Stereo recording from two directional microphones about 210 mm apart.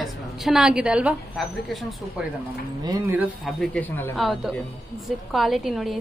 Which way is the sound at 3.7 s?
5° left (ahead or behind).